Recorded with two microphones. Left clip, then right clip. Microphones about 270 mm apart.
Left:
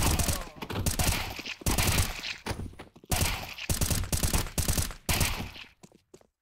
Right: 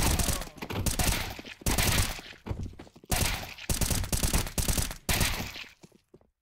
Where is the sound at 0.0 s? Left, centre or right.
Centre.